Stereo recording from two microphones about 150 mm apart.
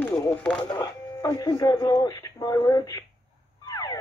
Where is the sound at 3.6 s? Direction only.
25° left (ahead or behind).